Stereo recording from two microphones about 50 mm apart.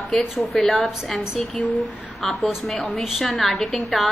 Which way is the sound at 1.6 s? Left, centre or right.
Left.